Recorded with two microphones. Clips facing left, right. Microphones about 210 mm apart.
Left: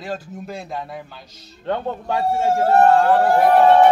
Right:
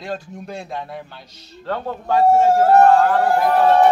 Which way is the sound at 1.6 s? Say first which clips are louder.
Left 2 dB; 20° left (ahead or behind).